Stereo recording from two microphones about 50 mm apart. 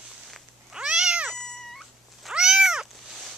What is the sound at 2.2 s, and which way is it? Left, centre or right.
Cat, centre.